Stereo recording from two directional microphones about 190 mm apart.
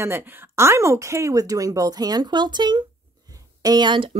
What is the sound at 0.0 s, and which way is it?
Speech, 10° right (ahead or behind).